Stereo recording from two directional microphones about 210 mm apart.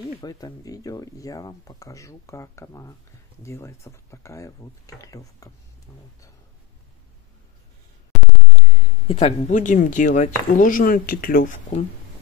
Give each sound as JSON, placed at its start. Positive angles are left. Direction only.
{"t": 0.2, "sound": "speech", "side_deg": 15}
{"t": 9.0, "sound": "speech", "side_deg": 25}